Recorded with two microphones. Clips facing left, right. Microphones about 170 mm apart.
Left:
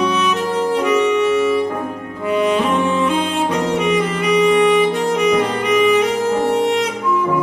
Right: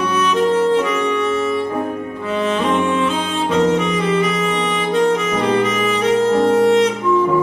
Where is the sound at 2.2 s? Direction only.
15° left (ahead or behind).